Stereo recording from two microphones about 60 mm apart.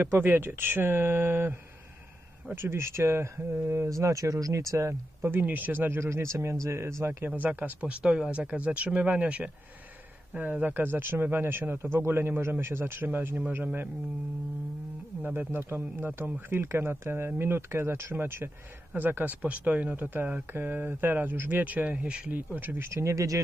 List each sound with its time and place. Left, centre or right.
0.0 s speech: right
4.7 s speech: right
5.4 s speech: right
7.2 s speech: right
15.2 s speech: right; by 22.4 s centre
22.5 s speech: right
22.8 s speech: right